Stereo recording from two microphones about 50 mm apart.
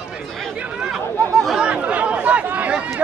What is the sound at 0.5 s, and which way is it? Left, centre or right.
Chatter, right.